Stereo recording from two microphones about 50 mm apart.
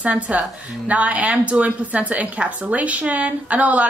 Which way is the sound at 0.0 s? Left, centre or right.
Right.